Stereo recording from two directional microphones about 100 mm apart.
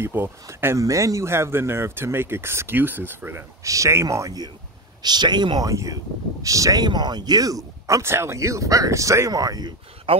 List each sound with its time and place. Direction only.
0.0 s speech: 25° right (ahead or behind); by 5.7 s 45° right (ahead or behind)
5.7 s speech: 35° right (ahead or behind)
10.1 s speech: 60° right (ahead or behind)